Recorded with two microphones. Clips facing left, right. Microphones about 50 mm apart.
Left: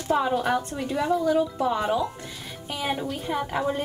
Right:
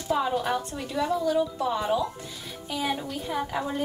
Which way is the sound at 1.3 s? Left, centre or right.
Left.